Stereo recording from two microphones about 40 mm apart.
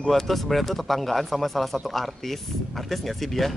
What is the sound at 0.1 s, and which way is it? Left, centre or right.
Speech, centre.